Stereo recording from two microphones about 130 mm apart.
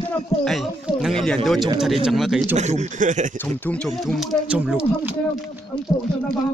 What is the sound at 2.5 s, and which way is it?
Speech, 60° right (ahead or behind).